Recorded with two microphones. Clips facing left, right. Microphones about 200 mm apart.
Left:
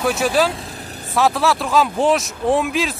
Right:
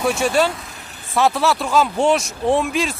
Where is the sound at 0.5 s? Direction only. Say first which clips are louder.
Left 5 dB; 35° left (ahead or behind).